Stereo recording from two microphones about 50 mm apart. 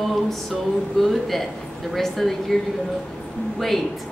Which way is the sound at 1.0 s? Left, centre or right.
Centre.